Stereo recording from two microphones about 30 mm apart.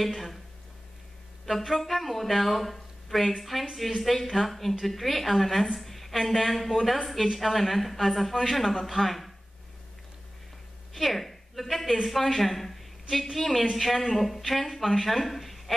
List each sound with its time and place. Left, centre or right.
0.0 s a sound: centre
1.4 s speech: centre
10.9 s a woman's voice: centre